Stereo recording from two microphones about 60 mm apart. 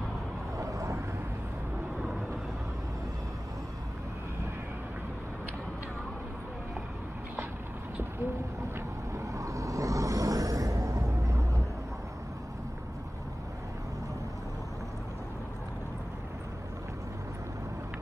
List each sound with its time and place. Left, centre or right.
0.6 s vehicle: right
9.1 s vehicle: right